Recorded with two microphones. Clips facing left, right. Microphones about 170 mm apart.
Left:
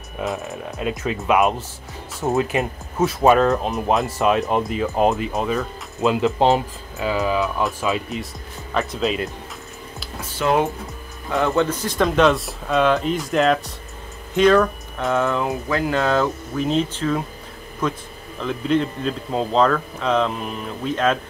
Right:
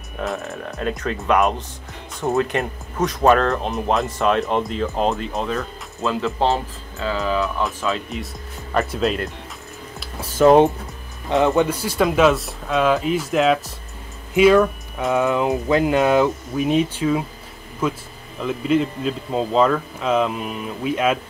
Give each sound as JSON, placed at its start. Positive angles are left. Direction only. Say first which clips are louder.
{"t": 0.2, "sound": "speech", "louder": "even", "side_deg": 5}
{"t": 5.9, "sound": "speech", "louder": "left 4 dB", "side_deg": 15}
{"t": 8.1, "sound": "speech", "louder": "left 1 dB", "side_deg": 0}
{"t": 10.3, "sound": "speech", "louder": "right 7 dB", "side_deg": -40}
{"t": 11.2, "sound": "speech", "louder": "right 3 dB", "side_deg": -20}
{"t": 15.1, "sound": "speech", "louder": "right 3 dB", "side_deg": -15}